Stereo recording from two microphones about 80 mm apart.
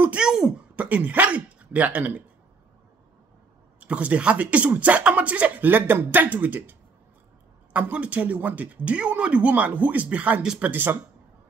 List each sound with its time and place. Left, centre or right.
0.0 s a sound: centre
3.8 s speech: centre
10.7 s speech: right